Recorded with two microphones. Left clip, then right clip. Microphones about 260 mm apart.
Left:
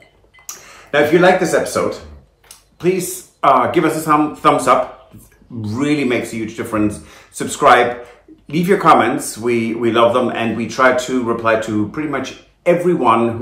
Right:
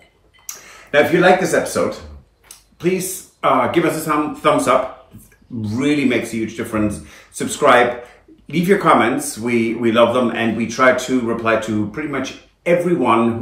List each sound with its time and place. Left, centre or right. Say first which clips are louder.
0.5 s speech: left 1 dB; centre